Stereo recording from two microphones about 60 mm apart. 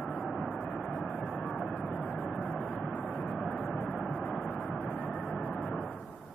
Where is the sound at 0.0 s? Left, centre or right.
Centre.